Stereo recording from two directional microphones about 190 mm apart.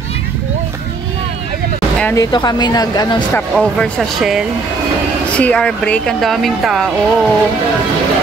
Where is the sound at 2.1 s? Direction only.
20° left (ahead or behind).